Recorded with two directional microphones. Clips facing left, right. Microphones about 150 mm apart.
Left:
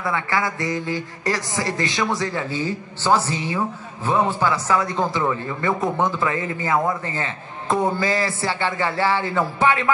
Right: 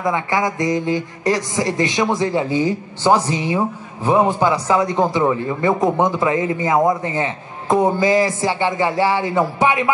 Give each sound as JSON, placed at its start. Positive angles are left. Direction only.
{"t": 0.0, "sound": "speech", "side_deg": -15}